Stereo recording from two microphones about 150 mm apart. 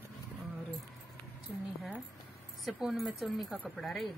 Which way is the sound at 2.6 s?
Centre (ahead or behind).